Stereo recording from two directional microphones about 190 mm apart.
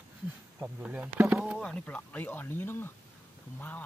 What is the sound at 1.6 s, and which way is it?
Speech, 5° left (ahead or behind).